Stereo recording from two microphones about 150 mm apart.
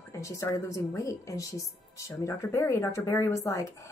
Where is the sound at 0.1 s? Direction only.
20° left (ahead or behind).